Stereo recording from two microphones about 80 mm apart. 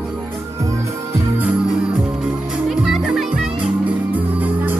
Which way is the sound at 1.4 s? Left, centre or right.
Centre.